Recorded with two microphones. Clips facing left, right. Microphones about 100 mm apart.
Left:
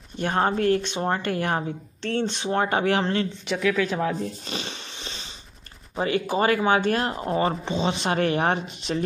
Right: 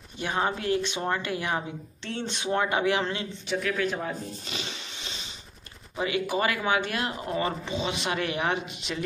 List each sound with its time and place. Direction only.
0.2 s speech: 45° left (ahead or behind)
1.2 s speech: 50° left (ahead or behind)
2.2 s speech: 30° left (ahead or behind)
3.4 s speech: 90° left
4.5 s a sound: 40° left (ahead or behind)
5.9 s speech: 40° left (ahead or behind)